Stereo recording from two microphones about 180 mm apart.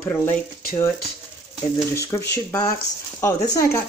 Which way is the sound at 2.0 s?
15° left (ahead or behind).